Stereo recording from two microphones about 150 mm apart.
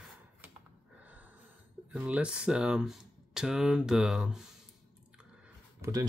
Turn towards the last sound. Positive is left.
turn(degrees=-25)  # may be behind; listen again after turning